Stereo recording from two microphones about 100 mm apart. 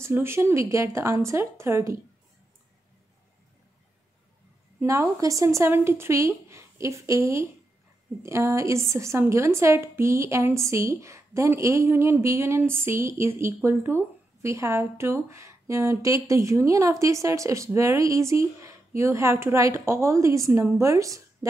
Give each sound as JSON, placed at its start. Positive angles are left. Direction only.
{"t": 0.0, "sound": "a woman's voice", "side_deg": -25}
{"t": 4.7, "sound": "a woman's voice", "side_deg": -25}